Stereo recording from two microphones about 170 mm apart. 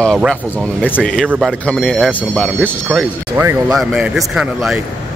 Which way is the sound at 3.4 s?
15° right (ahead or behind).